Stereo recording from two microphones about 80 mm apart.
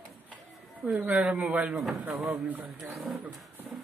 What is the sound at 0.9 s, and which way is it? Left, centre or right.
Speech, right.